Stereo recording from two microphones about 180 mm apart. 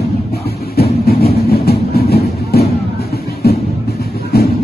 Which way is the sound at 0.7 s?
60° left (ahead or behind).